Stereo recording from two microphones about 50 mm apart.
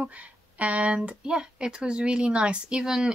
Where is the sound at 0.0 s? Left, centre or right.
Right.